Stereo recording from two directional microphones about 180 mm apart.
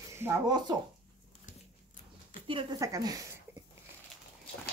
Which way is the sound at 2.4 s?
30° right (ahead or behind).